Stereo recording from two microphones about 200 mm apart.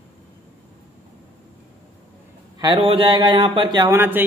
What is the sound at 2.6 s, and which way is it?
A man's voice, 25° right (ahead or behind).